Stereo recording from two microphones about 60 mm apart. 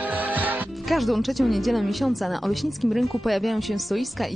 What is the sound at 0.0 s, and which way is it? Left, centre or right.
Music, right.